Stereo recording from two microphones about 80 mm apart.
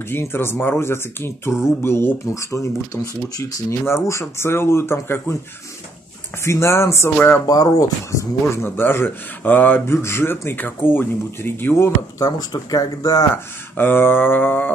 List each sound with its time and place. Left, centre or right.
0.1 s speech: left
6.4 s speech: left
7.4 s speech: left
8.6 s speech: left
12.2 s speech: left
13.3 s speech: left